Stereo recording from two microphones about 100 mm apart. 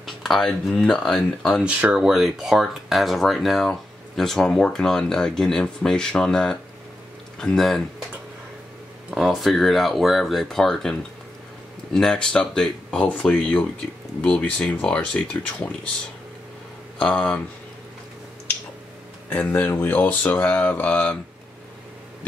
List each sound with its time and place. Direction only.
0.0 s speech: centre (ahead or behind)
1.6 s speech: 15° right (ahead or behind); by 7.8 s centre (ahead or behind)
9.1 s speech: centre (ahead or behind)
17.0 s speech: 10° left (ahead or behind)
19.2 s speech: 20° left (ahead or behind)